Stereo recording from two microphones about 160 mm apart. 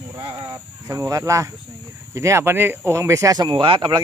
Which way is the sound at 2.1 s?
15° right (ahead or behind).